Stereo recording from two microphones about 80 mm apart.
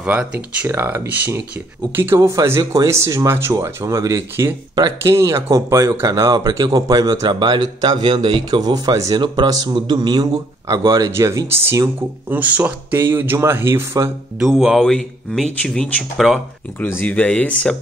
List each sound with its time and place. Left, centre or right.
0.0 s speech: centre
0.7 s speech: right
2.0 s speech: right
7.3 s speech: right
10.9 s speech: right
12.3 s speech: centre
14.4 s speech: centre
14.8 s speech: centre
16.8 s speech: left